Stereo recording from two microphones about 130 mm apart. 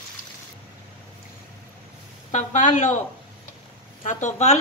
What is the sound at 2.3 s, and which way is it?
Speech, 75° left (ahead or behind).